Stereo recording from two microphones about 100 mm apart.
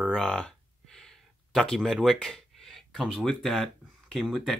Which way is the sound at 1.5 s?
5° left (ahead or behind).